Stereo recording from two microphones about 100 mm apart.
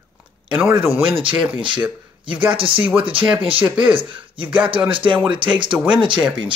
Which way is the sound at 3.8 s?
60° right (ahead or behind).